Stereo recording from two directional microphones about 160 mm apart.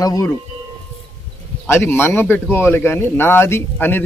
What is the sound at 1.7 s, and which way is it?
A man's voice, 15° left (ahead or behind).